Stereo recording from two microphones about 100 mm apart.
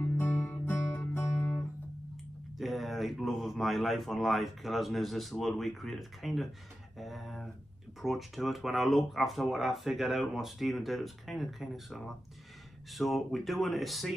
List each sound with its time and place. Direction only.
0.0 s music: 20° left (ahead or behind)
2.5 s speech: centre (ahead or behind)
7.0 s a sound: centre (ahead or behind)
8.0 s speech: centre (ahead or behind)